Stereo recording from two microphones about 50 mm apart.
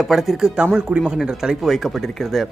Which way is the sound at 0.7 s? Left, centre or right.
Centre.